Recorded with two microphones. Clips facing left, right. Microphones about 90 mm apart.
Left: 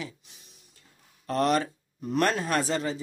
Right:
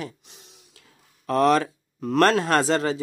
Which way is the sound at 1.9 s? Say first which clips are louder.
Right 7 dB; 90° right.